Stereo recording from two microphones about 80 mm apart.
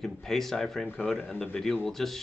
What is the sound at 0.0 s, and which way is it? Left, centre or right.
Speech, centre.